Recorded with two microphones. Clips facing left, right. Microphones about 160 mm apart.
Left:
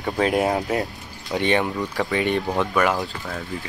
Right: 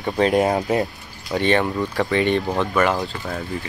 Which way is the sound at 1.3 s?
15° left (ahead or behind).